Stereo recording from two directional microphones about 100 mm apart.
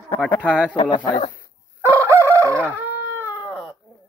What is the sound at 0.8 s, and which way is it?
Speech, 50° left (ahead or behind).